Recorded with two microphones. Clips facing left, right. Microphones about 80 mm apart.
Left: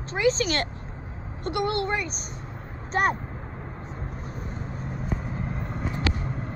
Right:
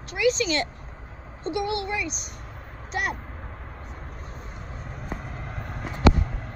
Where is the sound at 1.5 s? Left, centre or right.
Left.